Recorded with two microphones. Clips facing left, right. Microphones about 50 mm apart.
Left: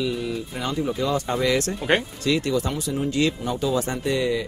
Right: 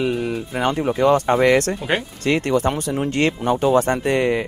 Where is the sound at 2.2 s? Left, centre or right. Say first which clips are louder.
Right 4 dB; right.